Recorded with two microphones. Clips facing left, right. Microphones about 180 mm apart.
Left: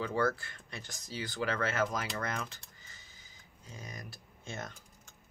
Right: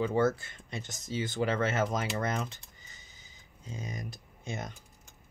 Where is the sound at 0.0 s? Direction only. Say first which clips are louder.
Right 4 dB; 20° right (ahead or behind).